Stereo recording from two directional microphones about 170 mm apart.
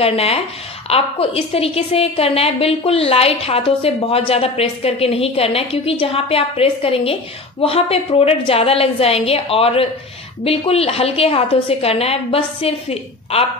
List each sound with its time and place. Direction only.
0.0 s a woman's voice: 35° left (ahead or behind)